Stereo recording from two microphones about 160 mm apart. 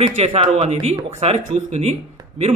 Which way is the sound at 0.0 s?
40° right (ahead or behind).